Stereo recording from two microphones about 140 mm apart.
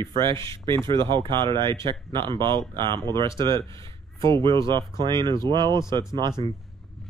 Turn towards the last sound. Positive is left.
turn(degrees=-30)  # may be behind; listen again after turning